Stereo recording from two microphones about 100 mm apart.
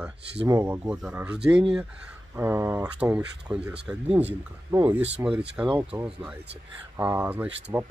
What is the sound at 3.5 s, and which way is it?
Speech, 10° right (ahead or behind).